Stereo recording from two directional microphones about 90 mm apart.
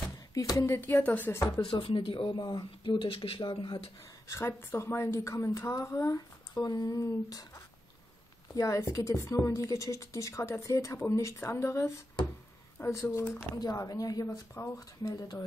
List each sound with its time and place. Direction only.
0.3 s speech: 40° left (ahead or behind)
0.7 s speech: 20° left (ahead or behind)
1.6 s speech: 80° left
2.3 s speech: 55° left (ahead or behind)
4.3 s a woman's voice: 30° left (ahead or behind)
14.2 s a woman's voice: 30° left (ahead or behind)